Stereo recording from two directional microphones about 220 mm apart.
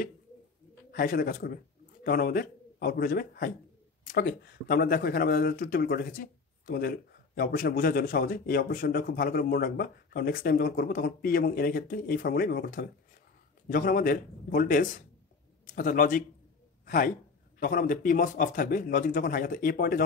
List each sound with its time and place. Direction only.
0.9 s a man's voice: 40° left (ahead or behind)